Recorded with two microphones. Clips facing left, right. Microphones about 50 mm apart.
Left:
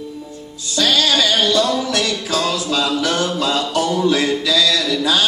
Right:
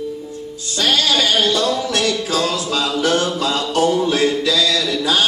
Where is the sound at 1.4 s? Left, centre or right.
Right.